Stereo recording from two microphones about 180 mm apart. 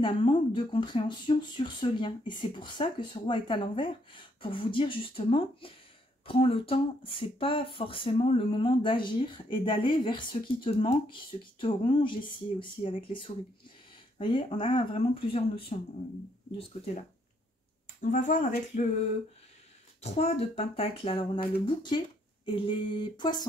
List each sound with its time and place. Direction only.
0.0 s speech: 30° left (ahead or behind)
18.0 s speech: 45° left (ahead or behind)
20.0 s speech: 35° left (ahead or behind)